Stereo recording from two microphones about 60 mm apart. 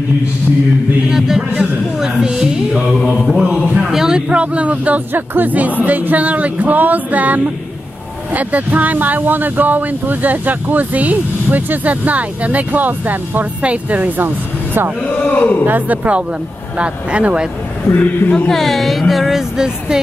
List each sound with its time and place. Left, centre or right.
1.1 s speech: centre
2.0 s a sound: centre
3.1 s mantra: centre
3.8 s speech: centre; by 14.9 s right
15.3 s a man's voice: left
15.6 s speech: right
17.9 s a man's voice: left
18.5 s speech: centre